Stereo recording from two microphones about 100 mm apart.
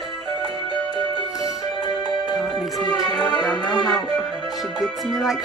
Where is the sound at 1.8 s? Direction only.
45° left (ahead or behind).